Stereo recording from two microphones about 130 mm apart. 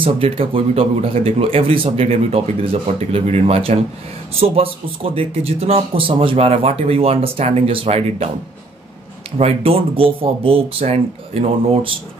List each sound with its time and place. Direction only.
0.0 s speech: 45° right (ahead or behind)
9.4 s speech: 45° right (ahead or behind)